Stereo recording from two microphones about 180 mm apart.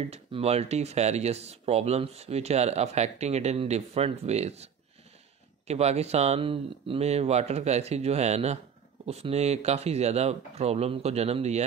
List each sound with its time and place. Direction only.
0.0 s speech: 35° right (ahead or behind)
5.7 s speech: 35° right (ahead or behind)